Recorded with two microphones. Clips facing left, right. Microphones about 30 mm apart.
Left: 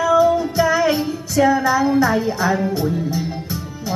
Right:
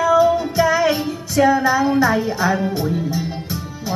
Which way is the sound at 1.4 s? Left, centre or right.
Centre.